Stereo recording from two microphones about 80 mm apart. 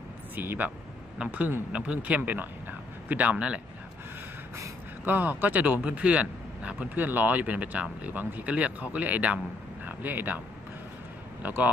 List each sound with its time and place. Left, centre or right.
0.4 s a man's voice: right
5.0 s speech: right
11.4 s speech: right